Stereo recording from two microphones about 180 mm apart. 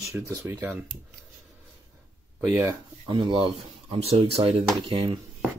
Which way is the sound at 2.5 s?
15° right (ahead or behind).